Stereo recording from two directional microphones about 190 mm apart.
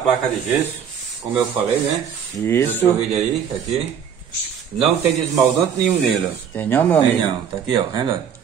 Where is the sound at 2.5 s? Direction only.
10° left (ahead or behind).